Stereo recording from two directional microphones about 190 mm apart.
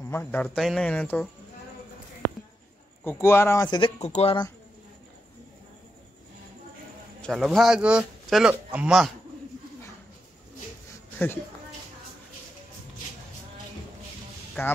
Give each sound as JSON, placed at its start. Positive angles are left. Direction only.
{"t": 0.0, "sound": "speech", "side_deg": 10}
{"t": 3.0, "sound": "speech", "side_deg": 10}
{"t": 4.0, "sound": "speech", "side_deg": 35}
{"t": 7.2, "sound": "a man's voice", "side_deg": 0}
{"t": 14.6, "sound": "speech", "side_deg": 10}